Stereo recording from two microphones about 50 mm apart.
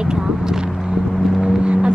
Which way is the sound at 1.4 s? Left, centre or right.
Right.